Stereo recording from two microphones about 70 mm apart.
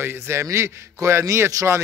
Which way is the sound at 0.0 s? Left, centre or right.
Right.